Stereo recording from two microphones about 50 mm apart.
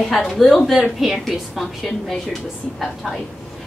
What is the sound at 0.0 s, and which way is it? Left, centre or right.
A woman's voice, centre.